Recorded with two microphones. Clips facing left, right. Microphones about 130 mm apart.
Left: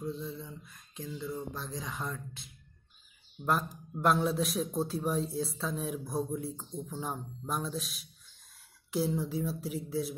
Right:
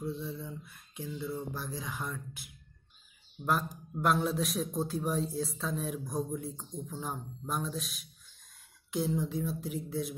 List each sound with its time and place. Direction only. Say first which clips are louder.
0.5 s a man's voice: right 3 dB; 10° right (ahead or behind)
3.4 s a man's voice: even; centre (ahead or behind)